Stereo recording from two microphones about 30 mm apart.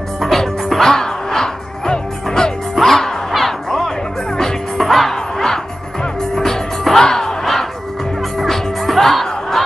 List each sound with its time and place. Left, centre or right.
0.2 s music: centre
0.9 s music: centre
5.1 s music: centre
8.5 s music: centre